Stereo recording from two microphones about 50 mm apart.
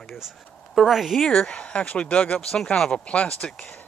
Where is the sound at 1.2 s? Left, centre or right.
Centre.